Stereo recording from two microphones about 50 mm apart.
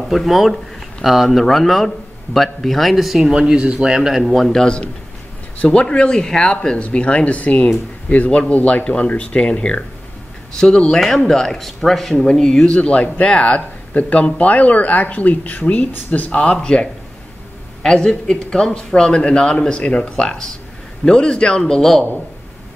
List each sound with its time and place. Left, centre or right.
0.1 s speech: centre
3.3 s speech: centre
4.2 s speech: centre
4.5 s speech: centre
10.6 s speech: centre; by 16.3 s left
16.3 s speech: centre